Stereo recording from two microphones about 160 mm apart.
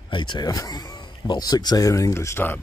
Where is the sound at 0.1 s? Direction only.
30° left (ahead or behind); by 2.6 s 15° left (ahead or behind).